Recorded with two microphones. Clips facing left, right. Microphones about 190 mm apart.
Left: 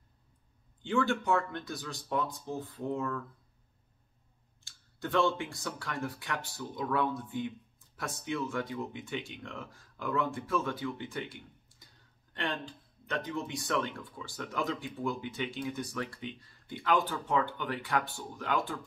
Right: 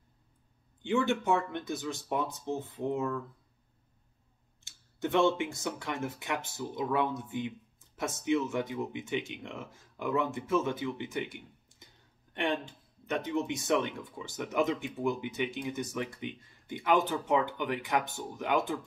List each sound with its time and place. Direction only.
0.8 s speech: 20° right (ahead or behind)
3.0 s speech: 10° right (ahead or behind)
4.6 s clicking: 20° right (ahead or behind)
5.4 s speech: 20° right (ahead or behind)
12.4 s speech: 20° right (ahead or behind)